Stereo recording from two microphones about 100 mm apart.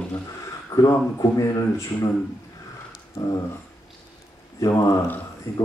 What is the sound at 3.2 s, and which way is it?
Speech, 35° left (ahead or behind).